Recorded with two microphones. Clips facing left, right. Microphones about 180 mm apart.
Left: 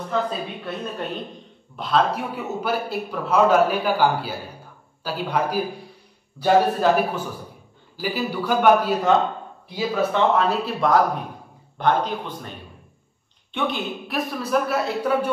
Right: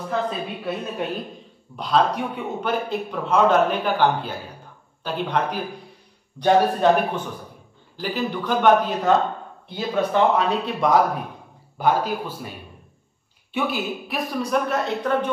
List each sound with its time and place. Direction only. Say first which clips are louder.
0.7 s a man's voice: right 3 dB; 5° right (ahead or behind)